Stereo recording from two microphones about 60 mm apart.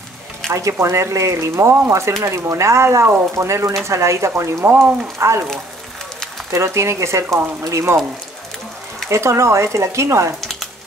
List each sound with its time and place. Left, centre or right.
0.5 s speech: right
4.6 s speech: right
5.2 s speech: right
6.5 s speech: right
9.1 s speech: right
10.4 s a sound: centre